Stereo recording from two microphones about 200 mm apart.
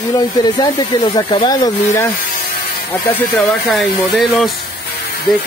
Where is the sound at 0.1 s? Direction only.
20° left (ahead or behind).